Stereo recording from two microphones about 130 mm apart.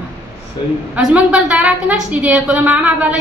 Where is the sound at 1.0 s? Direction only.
5° right (ahead or behind).